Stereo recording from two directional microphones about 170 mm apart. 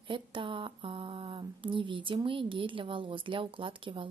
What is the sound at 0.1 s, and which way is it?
Speech, 30° right (ahead or behind).